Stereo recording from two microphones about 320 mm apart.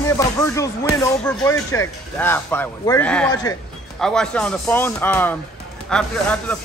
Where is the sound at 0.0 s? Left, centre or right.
Centre.